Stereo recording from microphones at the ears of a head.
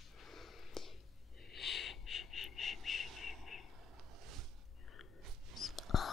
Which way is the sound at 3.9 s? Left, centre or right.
Right.